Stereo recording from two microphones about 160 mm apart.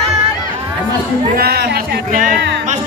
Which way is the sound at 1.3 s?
85° right.